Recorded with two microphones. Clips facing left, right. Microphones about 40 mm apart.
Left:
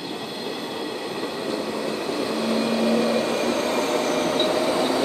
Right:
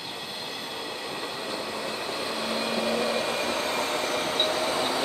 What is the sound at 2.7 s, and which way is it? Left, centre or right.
Vehicle, centre.